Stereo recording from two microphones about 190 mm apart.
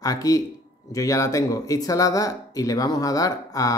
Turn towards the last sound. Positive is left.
turn(degrees=20)  # may be behind; listen again after turning